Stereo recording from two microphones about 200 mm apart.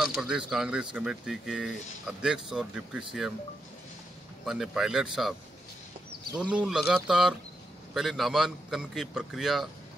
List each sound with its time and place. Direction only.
0.0 s speech: 5° right (ahead or behind)
4.5 s speech: centre (ahead or behind)
6.5 s speech: 5° right (ahead or behind)